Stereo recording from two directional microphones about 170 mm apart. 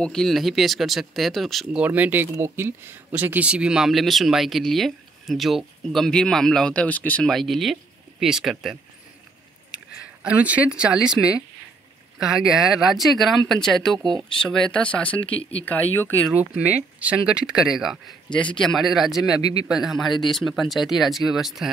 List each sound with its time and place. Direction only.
0.0 s speech: 5° left (ahead or behind)
10.2 s speech: 10° right (ahead or behind)
13.9 s speech: 25° right (ahead or behind)
14.4 s speech: 5° left (ahead or behind)
16.3 s speech: 10° right (ahead or behind)